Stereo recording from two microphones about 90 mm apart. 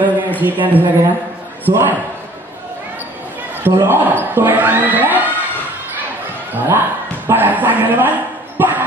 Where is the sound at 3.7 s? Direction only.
25° right (ahead or behind).